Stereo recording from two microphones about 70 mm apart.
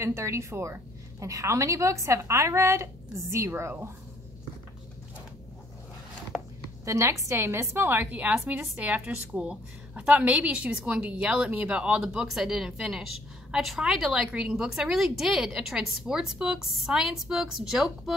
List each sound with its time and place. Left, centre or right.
0.0 s a woman's voice: right
6.3 s a sound: centre
6.8 s a woman's voice: right
8.2 s a woman's voice: right; by 18.1 s centre